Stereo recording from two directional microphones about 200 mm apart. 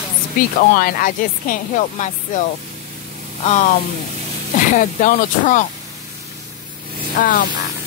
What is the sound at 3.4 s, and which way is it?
Speech, 35° left (ahead or behind).